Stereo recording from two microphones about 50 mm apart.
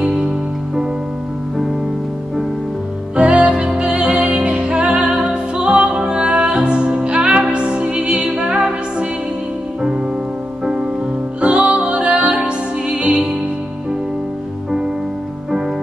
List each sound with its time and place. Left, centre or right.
0.0 s music: centre
3.2 s music: right
10.6 s music: centre
11.4 s music: right